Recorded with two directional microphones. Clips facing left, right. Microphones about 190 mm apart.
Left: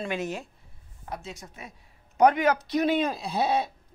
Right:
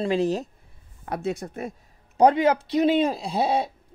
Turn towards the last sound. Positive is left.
turn(degrees=-30)  # may be behind; listen again after turning